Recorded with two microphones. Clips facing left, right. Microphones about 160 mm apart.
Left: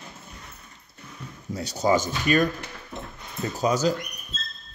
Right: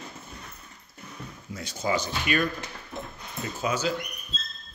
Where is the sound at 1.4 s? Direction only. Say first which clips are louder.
Left 6 dB; 40° left (ahead or behind).